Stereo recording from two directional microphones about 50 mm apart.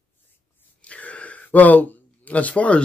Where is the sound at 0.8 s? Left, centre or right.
Left.